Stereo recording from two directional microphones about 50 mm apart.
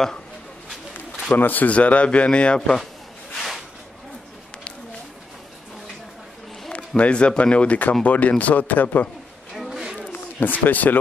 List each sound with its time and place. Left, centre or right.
1.3 s speech: left; by 2.8 s centre
3.3 s a sound: centre
7.0 s speech: left
10.1 s speech: left